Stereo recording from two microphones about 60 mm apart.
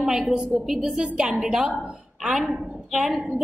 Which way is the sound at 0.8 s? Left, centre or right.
Centre.